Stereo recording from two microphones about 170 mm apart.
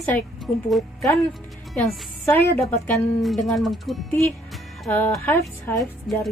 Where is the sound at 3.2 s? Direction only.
Centre (ahead or behind).